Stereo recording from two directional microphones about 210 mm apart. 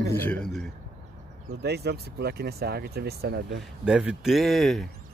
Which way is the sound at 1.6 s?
50° right (ahead or behind).